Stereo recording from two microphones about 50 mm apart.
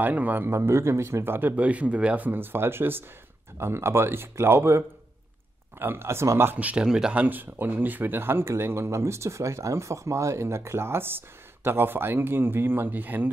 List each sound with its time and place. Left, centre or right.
0.0 s a man's voice: right
0.5 s speech: right
1.2 s speech: right
1.6 s speech: right
2.1 s speech: right
3.5 s speech: right
6.0 s speech: right
6.8 s speech: centre
7.2 s speech: right